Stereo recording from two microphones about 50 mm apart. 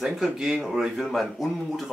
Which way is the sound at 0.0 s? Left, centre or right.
Centre.